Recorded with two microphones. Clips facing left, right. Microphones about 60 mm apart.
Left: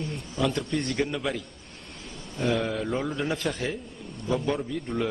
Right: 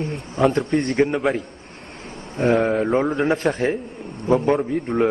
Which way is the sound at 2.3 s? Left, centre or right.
Right.